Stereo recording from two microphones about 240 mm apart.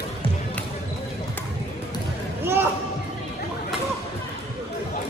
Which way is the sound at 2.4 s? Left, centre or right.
Centre.